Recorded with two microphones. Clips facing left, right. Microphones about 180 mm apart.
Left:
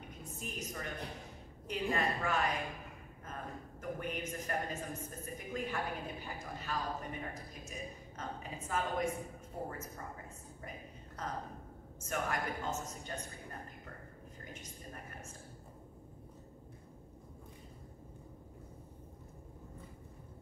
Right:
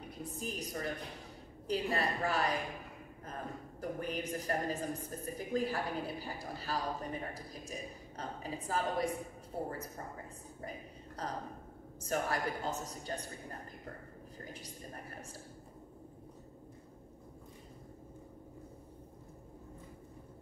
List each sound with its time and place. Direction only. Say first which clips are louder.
0.1 s a woman's voice: right 5 dB; 35° right (ahead or behind)
3.8 s a woman's voice: right 2 dB; 35° right (ahead or behind)
11.2 s a woman's voice: right 1 dB; 35° right (ahead or behind)